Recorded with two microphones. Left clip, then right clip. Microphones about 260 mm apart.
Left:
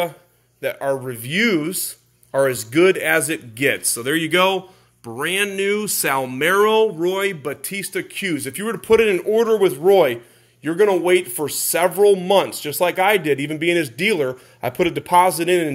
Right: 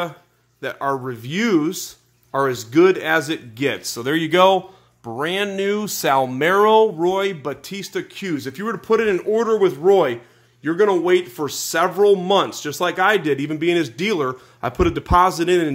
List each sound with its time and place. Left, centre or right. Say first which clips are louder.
0.6 s speech: left 1 dB; centre
4.0 s speech: right 3 dB; centre